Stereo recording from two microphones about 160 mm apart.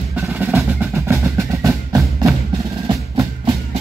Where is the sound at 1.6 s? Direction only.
20° right (ahead or behind).